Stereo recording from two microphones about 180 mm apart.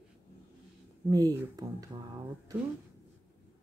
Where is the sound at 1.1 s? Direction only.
20° right (ahead or behind).